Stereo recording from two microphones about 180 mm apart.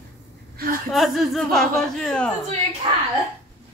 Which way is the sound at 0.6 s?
55° right (ahead or behind).